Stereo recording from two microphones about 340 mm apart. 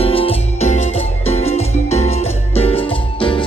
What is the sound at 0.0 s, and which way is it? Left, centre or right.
Music, centre.